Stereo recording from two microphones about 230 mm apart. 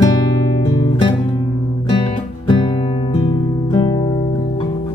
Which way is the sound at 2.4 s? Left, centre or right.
Left.